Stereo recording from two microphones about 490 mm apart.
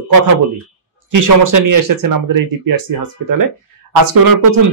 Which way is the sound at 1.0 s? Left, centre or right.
Right.